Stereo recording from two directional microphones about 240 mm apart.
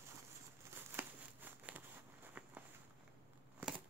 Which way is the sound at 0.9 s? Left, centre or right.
Centre.